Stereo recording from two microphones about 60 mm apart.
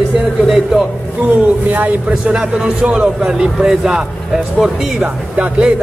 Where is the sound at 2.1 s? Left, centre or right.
Centre.